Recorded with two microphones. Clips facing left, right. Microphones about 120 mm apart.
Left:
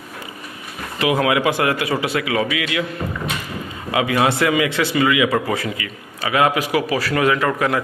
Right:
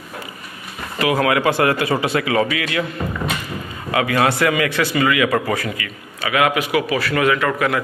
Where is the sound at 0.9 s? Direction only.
20° left (ahead or behind).